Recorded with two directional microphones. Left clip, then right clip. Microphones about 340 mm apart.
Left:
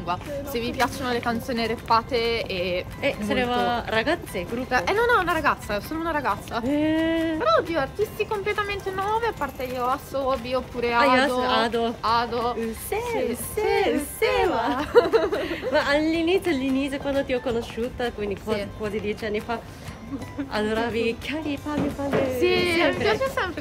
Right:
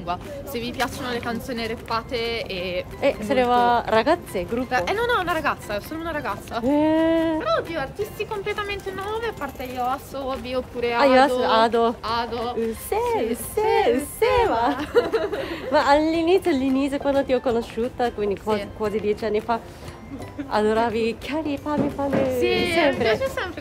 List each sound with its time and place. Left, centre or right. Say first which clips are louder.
0.1 s speech: left 1 dB; centre
3.0 s a woman's voice: right 6 dB; centre
4.6 s speech: left 2 dB; centre
6.7 s a woman's voice: right 4 dB; centre
7.3 s speech: left 2 dB; centre
11.1 s a woman's voice: right 4 dB; centre
12.0 s speech: left 3 dB; centre
12.9 s a woman's voice: right 4 dB; centre
13.7 s speech: right 3 dB; centre
14.4 s a woman's voice: right 2 dB; centre
14.8 s speech: left 2 dB; centre
15.4 s a woman's voice: right 3 dB; centre
22.4 s speech: even; centre